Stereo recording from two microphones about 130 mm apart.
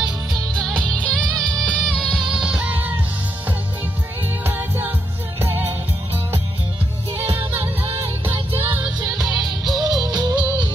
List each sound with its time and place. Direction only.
0.7 s music: 10° left (ahead or behind)
4.2 s music: 15° right (ahead or behind)
8.3 s music: 15° right (ahead or behind)
9.2 s music: centre (ahead or behind)
10.1 s music: 35° right (ahead or behind)